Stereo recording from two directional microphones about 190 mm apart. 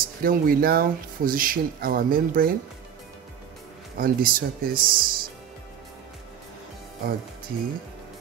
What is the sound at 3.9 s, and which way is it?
Speech, 50° right (ahead or behind).